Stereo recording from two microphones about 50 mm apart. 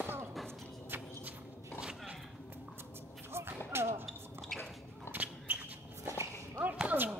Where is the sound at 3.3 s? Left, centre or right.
Right.